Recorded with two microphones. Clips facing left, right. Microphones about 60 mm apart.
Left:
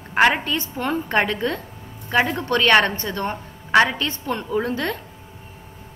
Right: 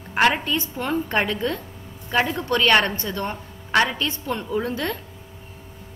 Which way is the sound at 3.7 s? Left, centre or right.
Centre.